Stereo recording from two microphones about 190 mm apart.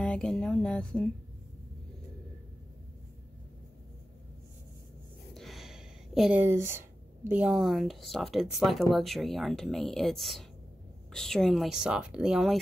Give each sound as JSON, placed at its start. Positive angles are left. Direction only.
{"t": 0.0, "sound": "speech", "side_deg": 5}
{"t": 5.3, "sound": "speech", "side_deg": 0}